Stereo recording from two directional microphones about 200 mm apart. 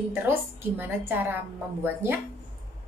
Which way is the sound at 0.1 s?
10° right (ahead or behind).